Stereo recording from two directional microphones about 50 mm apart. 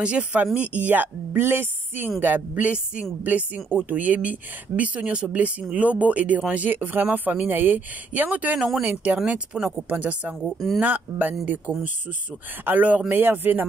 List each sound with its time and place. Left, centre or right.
0.2 s a woman's voice: right
8.5 s speech: centre
9.3 s speech: right
10.4 s speech: centre
10.8 s a woman's voice: right